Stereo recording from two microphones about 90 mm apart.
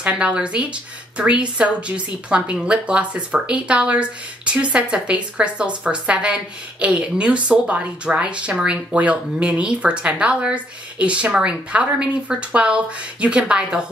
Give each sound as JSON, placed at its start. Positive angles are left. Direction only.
{"t": 0.0, "sound": "speech", "side_deg": -15}